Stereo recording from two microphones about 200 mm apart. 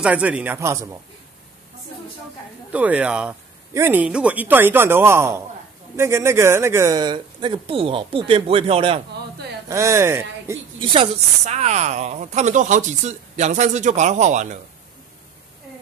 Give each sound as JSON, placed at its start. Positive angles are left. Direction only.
{"t": 0.0, "sound": "speech", "side_deg": -5}
{"t": 2.7, "sound": "speech", "side_deg": -5}
{"t": 9.7, "sound": "speech", "side_deg": -15}
{"t": 10.9, "sound": "speech", "side_deg": -30}